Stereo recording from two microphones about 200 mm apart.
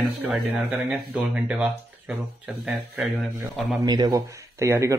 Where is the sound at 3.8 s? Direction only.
20° right (ahead or behind).